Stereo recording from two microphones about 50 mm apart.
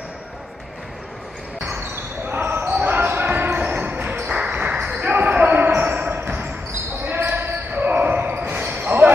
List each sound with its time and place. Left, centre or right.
2.2 s basketball bounce: right